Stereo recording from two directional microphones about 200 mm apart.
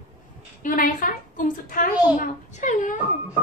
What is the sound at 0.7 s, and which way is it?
A woman's voice, 45° left (ahead or behind).